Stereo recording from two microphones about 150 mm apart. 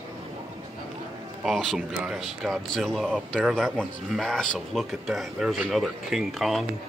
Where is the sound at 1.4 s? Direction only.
Centre (ahead or behind).